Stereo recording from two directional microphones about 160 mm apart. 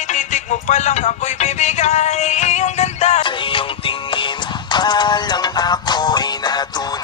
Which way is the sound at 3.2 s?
35° left (ahead or behind).